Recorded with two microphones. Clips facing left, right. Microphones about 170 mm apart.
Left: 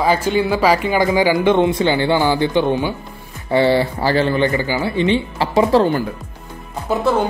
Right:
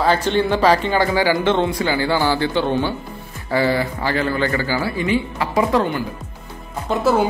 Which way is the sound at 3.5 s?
25° left (ahead or behind).